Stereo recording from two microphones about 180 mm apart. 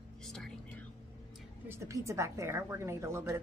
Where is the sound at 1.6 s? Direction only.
15° right (ahead or behind).